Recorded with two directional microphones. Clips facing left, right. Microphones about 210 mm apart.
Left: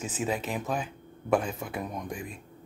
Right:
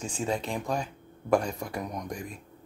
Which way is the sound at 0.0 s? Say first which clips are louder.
Even; 5° left (ahead or behind).